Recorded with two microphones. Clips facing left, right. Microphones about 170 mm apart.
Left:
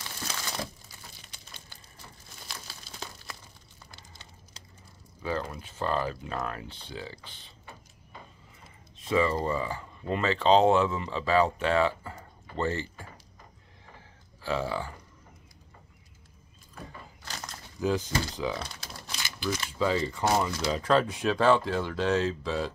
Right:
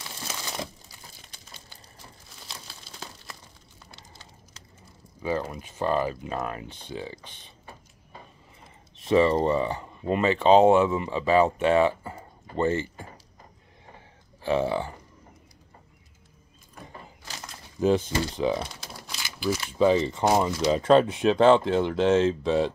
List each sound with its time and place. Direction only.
0.3 s crumpling: 20° right (ahead or behind)
5.2 s speech: 15° right (ahead or behind)
9.0 s speech: 30° right (ahead or behind)
14.4 s a sound: 20° right (ahead or behind)
17.7 s speech: 25° right (ahead or behind)
19.0 s a sound: 5° right (ahead or behind)
19.8 s speech: 20° right (ahead or behind)